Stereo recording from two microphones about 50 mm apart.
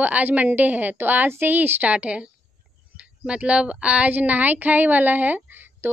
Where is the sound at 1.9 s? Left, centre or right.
Right.